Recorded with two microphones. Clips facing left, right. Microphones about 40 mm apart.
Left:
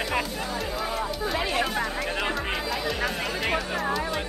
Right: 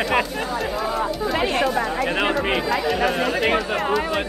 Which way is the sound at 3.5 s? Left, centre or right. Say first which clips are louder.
Right 6 dB; right.